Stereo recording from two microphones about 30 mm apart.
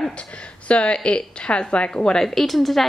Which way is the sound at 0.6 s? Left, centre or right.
Left.